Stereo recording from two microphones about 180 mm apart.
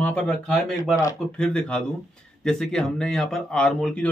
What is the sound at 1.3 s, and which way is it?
Speech, 5° left (ahead or behind).